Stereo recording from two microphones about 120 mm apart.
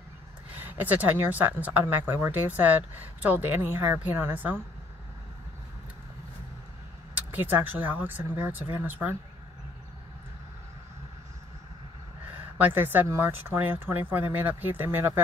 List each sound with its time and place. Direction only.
0.6 s speech: 15° right (ahead or behind)
7.2 s speech: 15° right (ahead or behind)
12.5 s speech: 15° right (ahead or behind)